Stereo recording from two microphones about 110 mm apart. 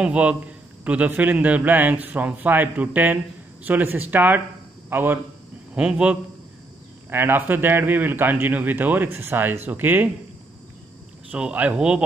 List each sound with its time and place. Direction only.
0.0 s speech: 10° right (ahead or behind)
11.3 s speech: 10° right (ahead or behind)